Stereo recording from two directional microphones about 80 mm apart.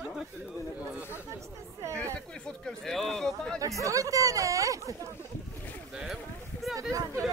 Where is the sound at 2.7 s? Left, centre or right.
Centre.